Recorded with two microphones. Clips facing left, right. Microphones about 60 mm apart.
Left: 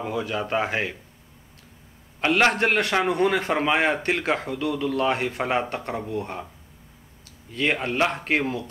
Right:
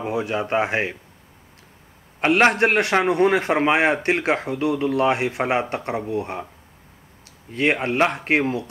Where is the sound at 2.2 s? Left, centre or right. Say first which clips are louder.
Right 3 dB; right.